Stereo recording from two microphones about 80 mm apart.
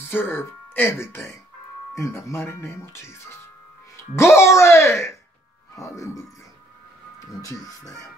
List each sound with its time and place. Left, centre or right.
0.0 s speech: left